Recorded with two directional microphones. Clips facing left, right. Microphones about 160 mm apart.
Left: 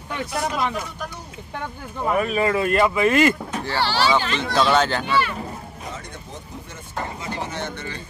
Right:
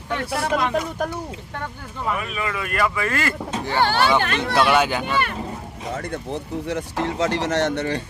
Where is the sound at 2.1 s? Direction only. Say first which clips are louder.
Left 6 dB; 40° left (ahead or behind); by 3.4 s 20° left (ahead or behind).